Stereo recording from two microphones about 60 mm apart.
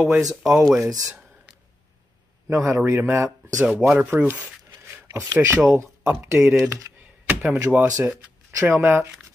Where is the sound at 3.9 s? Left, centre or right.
Right.